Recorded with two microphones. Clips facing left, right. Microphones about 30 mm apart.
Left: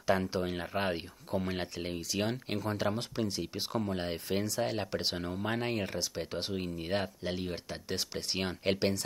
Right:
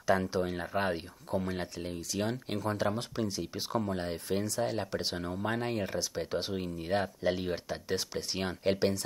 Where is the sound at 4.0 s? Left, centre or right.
Centre.